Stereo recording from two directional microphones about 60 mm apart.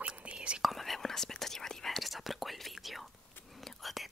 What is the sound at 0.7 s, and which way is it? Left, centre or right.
Whispering, centre.